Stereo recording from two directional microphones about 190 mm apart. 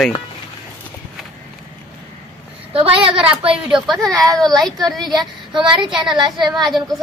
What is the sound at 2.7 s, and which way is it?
Speech, 30° right (ahead or behind).